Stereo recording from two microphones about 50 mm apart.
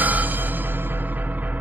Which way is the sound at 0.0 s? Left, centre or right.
Right.